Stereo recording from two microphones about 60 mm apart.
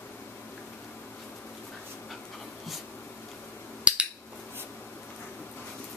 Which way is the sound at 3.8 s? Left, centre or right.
Right.